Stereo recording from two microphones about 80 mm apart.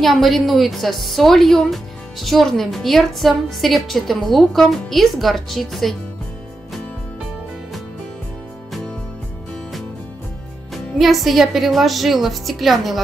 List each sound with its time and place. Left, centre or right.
0.0 s a woman's voice: centre
10.7 s a woman's voice: centre